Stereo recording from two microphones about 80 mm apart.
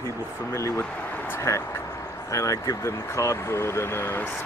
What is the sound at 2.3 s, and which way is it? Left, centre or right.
Speech, left.